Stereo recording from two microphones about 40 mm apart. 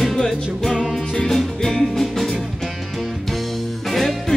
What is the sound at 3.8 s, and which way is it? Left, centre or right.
Music, centre.